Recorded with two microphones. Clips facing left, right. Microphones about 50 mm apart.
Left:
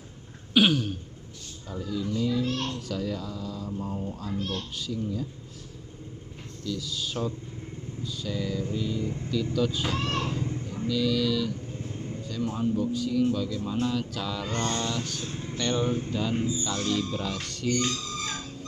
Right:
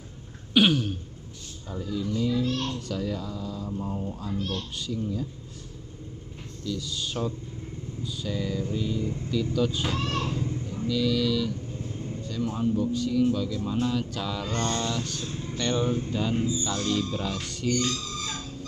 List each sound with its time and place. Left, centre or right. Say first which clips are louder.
0.6 s throat clearing: right 1 dB; centre
1.7 s speech: right 1 dB; centre
2.4 s a sound: right 1 dB; left
2.9 s speech: right 1 dB; centre
6.6 s speech: even; centre
8.0 s vehicle: right 1 dB; centre
9.3 s speech: right 1 dB; centre
9.9 s speech: even; left
10.7 s speech: even; centre
17.7 s a sound: even; left